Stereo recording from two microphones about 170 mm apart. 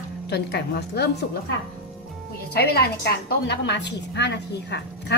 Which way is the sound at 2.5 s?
70° left (ahead or behind).